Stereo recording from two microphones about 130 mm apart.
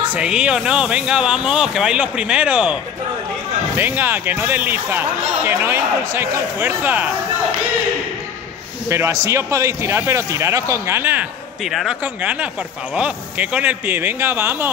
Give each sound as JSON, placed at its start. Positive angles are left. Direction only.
{"t": 0.1, "sound": "speech", "side_deg": -5}
{"t": 8.8, "sound": "a man's voice", "side_deg": -20}
{"t": 11.6, "sound": "speech", "side_deg": 0}